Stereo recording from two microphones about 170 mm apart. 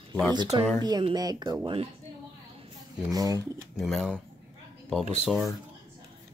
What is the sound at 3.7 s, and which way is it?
Speech, centre (ahead or behind).